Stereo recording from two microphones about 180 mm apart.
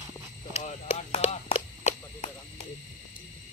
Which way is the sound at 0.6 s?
40° left (ahead or behind).